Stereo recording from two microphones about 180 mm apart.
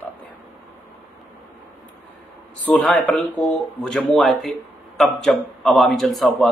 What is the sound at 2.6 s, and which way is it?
Speech, 10° left (ahead or behind).